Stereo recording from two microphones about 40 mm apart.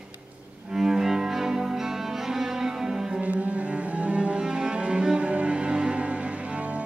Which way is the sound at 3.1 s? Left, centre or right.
Right.